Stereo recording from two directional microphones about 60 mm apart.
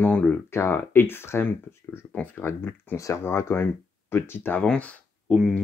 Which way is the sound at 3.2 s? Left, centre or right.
Left.